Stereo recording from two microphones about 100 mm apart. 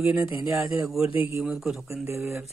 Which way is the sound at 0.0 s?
15° right (ahead or behind).